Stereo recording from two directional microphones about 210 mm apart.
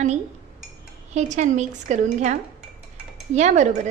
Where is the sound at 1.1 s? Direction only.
35° right (ahead or behind).